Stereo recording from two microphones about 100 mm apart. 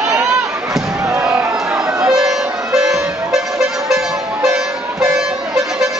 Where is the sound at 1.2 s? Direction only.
10° right (ahead or behind).